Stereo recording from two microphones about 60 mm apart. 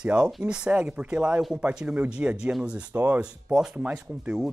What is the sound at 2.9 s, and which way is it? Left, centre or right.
Speech, right.